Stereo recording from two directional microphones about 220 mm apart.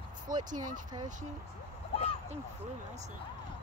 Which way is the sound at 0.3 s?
40° right (ahead or behind).